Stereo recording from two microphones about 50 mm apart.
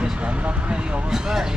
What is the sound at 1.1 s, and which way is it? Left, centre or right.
Speech, centre.